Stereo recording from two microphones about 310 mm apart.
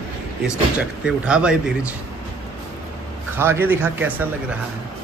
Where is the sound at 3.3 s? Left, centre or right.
Centre.